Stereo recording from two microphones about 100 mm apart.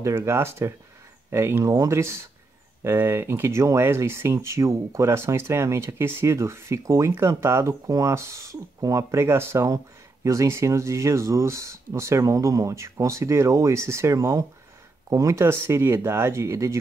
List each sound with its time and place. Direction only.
0.0 s speech: 25° right (ahead or behind)